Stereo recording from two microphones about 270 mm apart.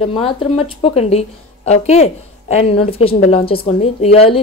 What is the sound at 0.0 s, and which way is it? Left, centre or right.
A woman's voice, centre.